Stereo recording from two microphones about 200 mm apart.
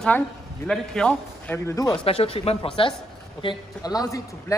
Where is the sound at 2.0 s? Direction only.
30° left (ahead or behind).